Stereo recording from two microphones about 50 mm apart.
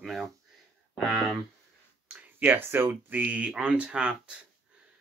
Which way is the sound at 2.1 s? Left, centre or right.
Right.